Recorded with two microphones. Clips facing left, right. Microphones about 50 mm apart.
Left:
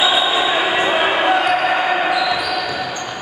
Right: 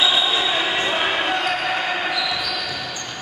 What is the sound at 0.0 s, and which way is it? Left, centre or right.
Basketball bounce, centre.